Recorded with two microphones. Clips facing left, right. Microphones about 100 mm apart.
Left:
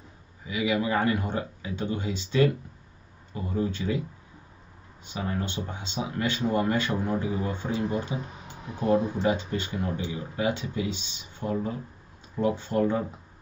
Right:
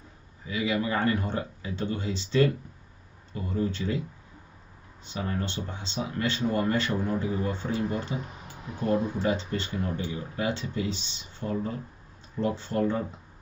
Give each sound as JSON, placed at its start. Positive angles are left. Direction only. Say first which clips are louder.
{"t": 0.5, "sound": "speech", "louder": "left 2 dB", "side_deg": 15}
{"t": 5.0, "sound": "speech", "louder": "left 1 dB", "side_deg": 15}